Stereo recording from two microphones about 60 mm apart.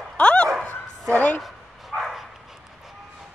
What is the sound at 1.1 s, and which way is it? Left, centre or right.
Speech, left.